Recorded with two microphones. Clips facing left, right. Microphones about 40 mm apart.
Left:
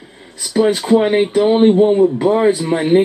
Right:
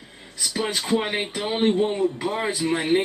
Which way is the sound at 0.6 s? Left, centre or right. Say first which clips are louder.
Left 12 dB; left.